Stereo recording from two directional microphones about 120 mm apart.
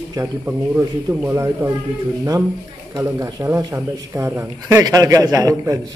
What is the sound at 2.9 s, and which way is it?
A man's voice, 25° right (ahead or behind).